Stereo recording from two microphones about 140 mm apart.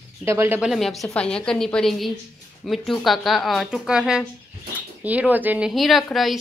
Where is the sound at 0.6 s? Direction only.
Centre (ahead or behind).